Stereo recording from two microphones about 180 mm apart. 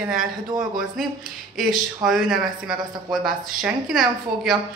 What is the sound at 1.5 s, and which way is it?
A woman's voice, centre (ahead or behind).